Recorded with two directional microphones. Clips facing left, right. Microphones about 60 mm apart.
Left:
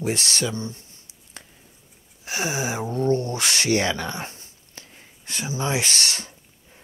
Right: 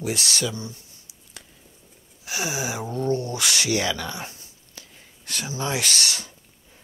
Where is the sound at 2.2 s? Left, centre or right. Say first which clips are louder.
Left 2 dB; left.